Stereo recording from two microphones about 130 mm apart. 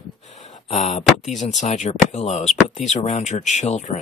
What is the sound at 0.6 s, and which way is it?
Speech, 65° left (ahead or behind).